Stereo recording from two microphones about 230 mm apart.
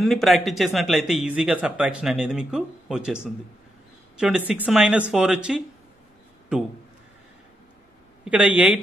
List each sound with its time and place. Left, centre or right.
0.0 s speech: centre
8.3 s speech: centre